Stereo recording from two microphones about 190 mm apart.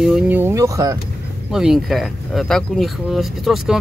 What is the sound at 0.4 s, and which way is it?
Speech, 15° right (ahead or behind).